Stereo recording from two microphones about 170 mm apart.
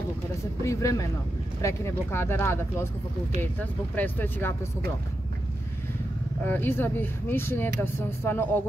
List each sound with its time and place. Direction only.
0.7 s speech: 20° left (ahead or behind)
6.4 s speech: 10° left (ahead or behind)